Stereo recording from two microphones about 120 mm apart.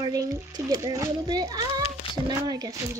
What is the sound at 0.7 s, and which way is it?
A child's voice, 30° right (ahead or behind).